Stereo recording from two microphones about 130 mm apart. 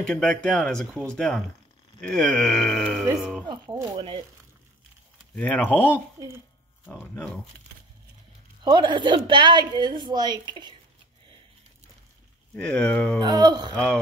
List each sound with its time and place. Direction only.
0.0 s speech: 5° left (ahead or behind)
3.6 s speech: 25° right (ahead or behind)
3.9 s a woman's voice: 40° right (ahead or behind)
5.3 s speech: 10° left (ahead or behind)
6.1 s a child's voice: 20° right (ahead or behind)
6.9 s speech: 10° left (ahead or behind)
8.6 s a woman's voice: 35° right (ahead or behind)
12.5 s speech: 10° left (ahead or behind)
13.2 s a woman's voice: 30° right (ahead or behind)